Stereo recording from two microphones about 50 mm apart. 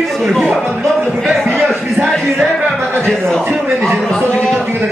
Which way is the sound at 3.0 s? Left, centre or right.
Centre.